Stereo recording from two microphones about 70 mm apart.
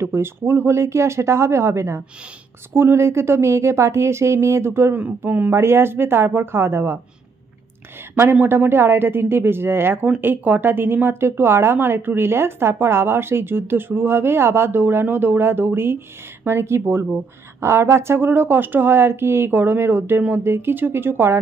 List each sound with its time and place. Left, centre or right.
0.0 s speech: right
4.9 s speech: right
8.2 s speech: right